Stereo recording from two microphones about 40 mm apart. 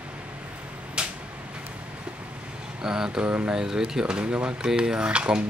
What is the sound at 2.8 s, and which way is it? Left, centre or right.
Speech, centre.